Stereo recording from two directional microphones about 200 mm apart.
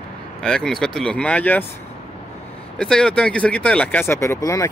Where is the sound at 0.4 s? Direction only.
5° left (ahead or behind).